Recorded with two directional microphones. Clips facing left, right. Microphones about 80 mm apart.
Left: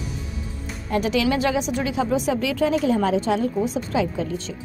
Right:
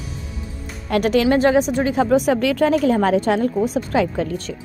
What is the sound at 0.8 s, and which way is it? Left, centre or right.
Speech, right.